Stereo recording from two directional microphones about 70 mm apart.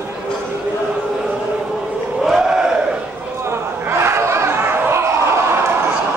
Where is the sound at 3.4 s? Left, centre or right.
Right.